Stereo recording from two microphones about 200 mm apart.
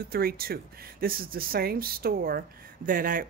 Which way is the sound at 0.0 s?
50° right (ahead or behind).